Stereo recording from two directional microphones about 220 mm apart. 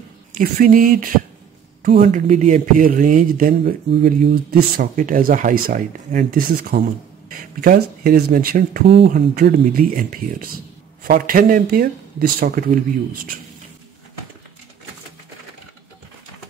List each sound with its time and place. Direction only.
0.4 s speech: 40° right (ahead or behind)